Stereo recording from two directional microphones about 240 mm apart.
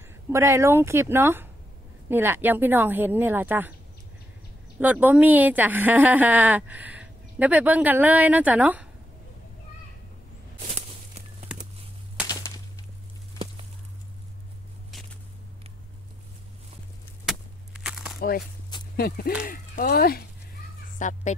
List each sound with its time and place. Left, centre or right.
0.3 s a woman's voice: centre
4.7 s a woman's voice: centre
12.3 s a sound: centre
18.9 s a child's voice: left